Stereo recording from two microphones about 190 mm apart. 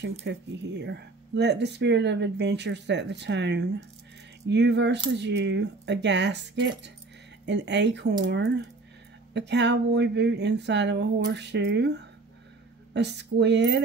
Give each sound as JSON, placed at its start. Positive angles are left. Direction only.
{"t": 0.2, "sound": "speech", "side_deg": -65}